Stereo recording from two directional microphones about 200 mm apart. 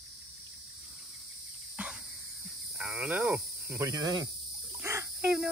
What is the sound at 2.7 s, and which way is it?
Speech, 5° right (ahead or behind).